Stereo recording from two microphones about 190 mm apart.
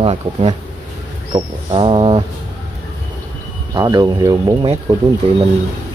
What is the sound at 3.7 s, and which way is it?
Speech, 20° right (ahead or behind).